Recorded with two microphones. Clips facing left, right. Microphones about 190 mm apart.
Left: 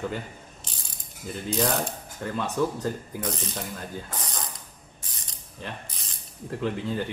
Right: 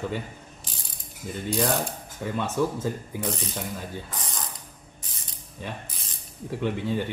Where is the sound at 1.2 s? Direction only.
Centre (ahead or behind).